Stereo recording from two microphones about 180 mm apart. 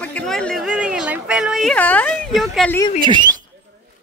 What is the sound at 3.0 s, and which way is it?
Speech, 25° right (ahead or behind).